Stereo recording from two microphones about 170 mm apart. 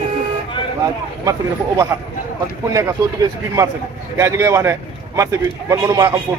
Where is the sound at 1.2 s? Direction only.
20° right (ahead or behind).